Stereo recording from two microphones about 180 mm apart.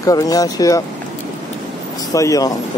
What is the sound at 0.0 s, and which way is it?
Speech, 20° left (ahead or behind).